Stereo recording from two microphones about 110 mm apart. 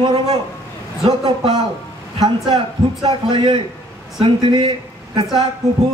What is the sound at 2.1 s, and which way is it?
Speech, 40° right (ahead or behind).